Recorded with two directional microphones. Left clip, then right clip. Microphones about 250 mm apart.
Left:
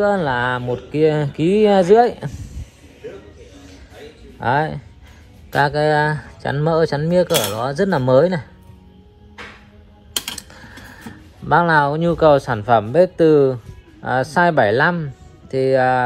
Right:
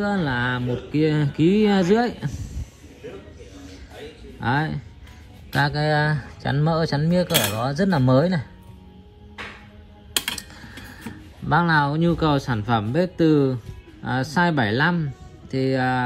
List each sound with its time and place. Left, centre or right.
0.0 s speech: centre
3.5 s music: centre
4.4 s speech: centre
10.2 s speech: centre